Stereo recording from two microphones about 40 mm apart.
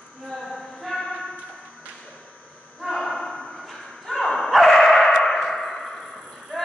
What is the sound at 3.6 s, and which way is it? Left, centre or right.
Bow-wow, centre.